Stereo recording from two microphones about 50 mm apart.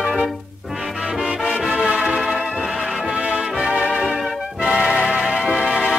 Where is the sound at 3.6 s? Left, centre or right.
Right.